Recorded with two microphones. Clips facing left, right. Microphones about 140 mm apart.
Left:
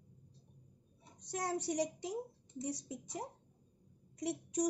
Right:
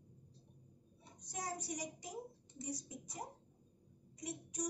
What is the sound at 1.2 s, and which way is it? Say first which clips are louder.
A woman's voice: left 7 dB; 80° left.